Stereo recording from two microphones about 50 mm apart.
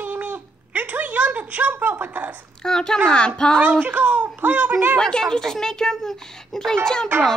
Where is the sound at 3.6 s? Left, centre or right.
Right.